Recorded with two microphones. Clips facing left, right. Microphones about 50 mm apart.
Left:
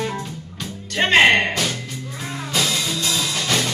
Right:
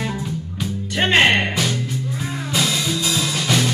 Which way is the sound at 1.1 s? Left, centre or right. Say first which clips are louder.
Left 2 dB; centre.